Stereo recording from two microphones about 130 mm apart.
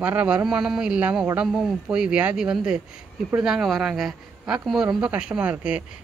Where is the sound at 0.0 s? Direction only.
10° right (ahead or behind).